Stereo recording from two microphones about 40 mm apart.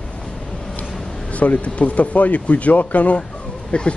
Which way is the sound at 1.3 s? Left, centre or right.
Left.